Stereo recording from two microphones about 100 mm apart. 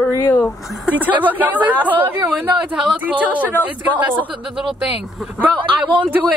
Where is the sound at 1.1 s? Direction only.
15° right (ahead or behind).